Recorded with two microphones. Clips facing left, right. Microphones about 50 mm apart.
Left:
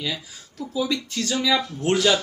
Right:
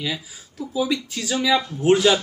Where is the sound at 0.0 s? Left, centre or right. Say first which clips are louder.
Right 2 dB; centre.